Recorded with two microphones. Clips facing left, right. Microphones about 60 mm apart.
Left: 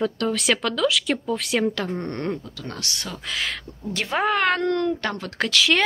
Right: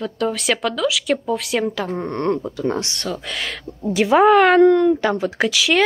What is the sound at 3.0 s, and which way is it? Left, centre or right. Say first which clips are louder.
Speech: right 3 dB; centre.